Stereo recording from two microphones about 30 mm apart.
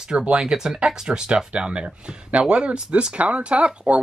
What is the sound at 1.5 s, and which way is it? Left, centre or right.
Speech, right.